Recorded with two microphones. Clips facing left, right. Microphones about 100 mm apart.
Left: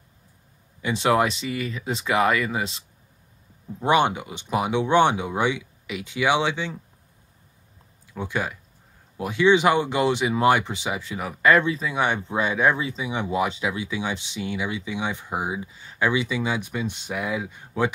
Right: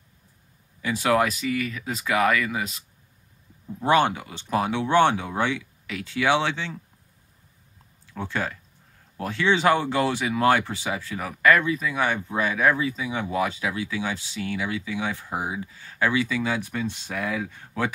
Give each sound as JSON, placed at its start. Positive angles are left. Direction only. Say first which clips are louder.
{"t": 0.8, "sound": "speech", "louder": "left 1 dB", "side_deg": 25}
{"t": 3.8, "sound": "speech", "louder": "even", "side_deg": 20}
{"t": 8.1, "sound": "speech", "louder": "left 1 dB", "side_deg": 15}